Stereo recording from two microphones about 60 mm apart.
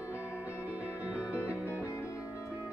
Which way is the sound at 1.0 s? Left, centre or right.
Right.